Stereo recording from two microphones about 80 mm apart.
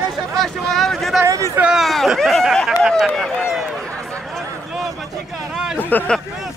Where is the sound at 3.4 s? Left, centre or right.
Centre.